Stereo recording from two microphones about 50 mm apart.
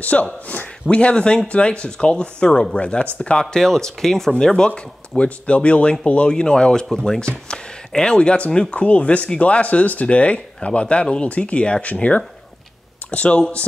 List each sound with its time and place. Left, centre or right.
0.0 s a man's voice: left